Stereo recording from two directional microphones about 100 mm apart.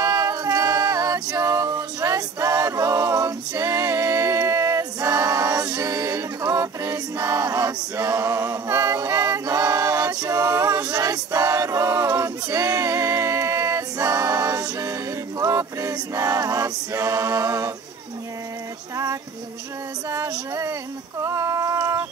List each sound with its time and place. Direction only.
0.0 s music: 35° right (ahead or behind)
20.1 s female singing: 30° right (ahead or behind)